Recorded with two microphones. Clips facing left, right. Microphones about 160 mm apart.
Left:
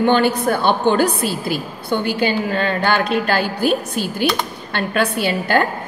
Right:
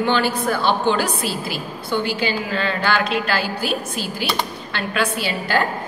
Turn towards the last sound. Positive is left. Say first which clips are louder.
# left 4 dB
turn(degrees=50)  # may be behind; listen again after turning